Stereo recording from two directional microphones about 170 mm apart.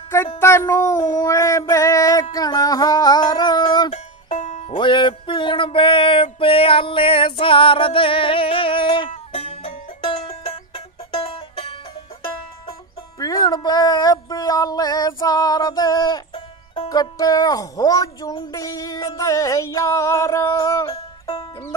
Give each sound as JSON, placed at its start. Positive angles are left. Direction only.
{"t": 0.4, "sound": "child singing", "side_deg": 15}
{"t": 1.7, "sound": "music", "side_deg": 20}
{"t": 3.9, "sound": "music", "side_deg": 45}
{"t": 4.6, "sound": "music", "side_deg": 30}
{"t": 13.2, "sound": "music", "side_deg": 25}